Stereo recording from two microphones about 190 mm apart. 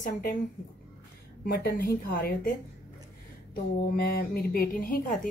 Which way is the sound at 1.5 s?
50° left (ahead or behind).